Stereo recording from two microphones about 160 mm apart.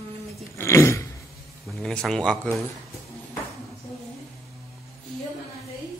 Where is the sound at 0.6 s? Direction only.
15° left (ahead or behind).